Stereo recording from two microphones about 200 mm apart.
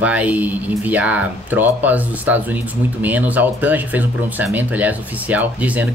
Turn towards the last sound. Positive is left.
turn(degrees=-10)  # may be behind; listen again after turning